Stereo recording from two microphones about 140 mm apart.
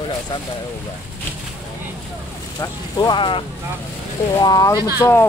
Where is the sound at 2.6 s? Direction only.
30° left (ahead or behind).